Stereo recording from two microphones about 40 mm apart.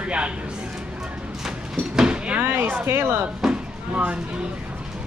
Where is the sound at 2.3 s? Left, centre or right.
Right.